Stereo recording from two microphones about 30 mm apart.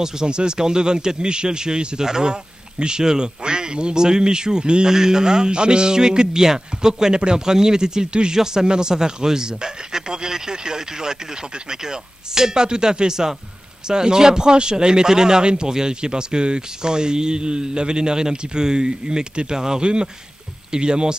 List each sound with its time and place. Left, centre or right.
0.0 s speech: right